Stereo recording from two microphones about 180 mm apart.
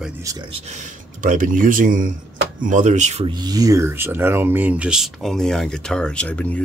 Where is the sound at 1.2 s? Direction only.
50° right (ahead or behind).